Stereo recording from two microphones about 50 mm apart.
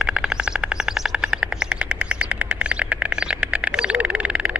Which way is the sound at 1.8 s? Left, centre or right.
Right.